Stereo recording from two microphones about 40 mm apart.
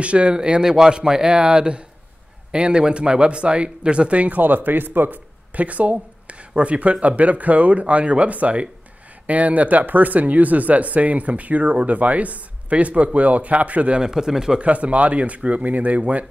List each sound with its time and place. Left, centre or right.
0.0 s speech: right
4.4 s speech: right
5.5 s speech: right
13.9 s speech: centre
14.6 s speech: right